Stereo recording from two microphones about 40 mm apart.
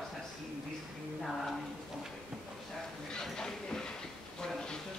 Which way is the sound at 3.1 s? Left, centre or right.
Centre.